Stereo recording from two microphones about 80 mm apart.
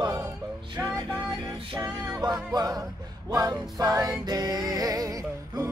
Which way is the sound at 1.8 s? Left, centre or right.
Right.